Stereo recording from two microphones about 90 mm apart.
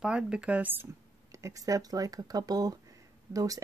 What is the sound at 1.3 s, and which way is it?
Speech, 35° right (ahead or behind).